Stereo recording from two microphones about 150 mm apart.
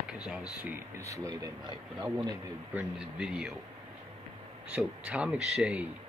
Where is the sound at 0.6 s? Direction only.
20° right (ahead or behind).